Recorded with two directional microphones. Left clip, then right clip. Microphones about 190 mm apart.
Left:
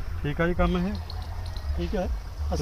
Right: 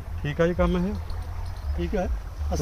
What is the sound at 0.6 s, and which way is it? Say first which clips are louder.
Speech: right 1 dB; 55° right (ahead or behind).